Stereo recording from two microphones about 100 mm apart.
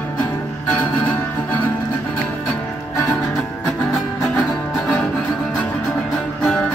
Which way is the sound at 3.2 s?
10° left (ahead or behind).